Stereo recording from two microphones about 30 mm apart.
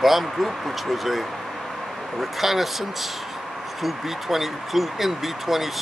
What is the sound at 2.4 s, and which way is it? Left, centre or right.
Speech, centre.